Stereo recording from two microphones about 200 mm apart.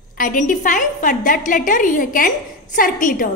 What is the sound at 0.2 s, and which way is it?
A woman's voice, 40° left (ahead or behind).